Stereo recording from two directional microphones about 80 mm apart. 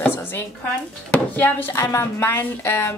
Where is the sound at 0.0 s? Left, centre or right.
Left.